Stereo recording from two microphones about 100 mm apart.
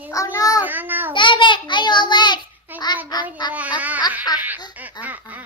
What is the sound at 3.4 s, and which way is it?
Speech, 45° left (ahead or behind).